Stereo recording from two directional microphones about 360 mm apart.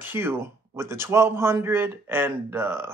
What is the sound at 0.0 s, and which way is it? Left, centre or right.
Speech, centre.